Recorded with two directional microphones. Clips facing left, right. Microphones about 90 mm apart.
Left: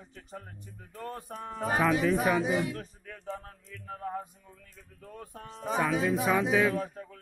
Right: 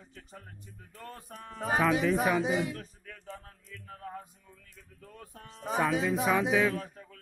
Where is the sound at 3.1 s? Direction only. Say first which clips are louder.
Left 7 dB; 25° left (ahead or behind).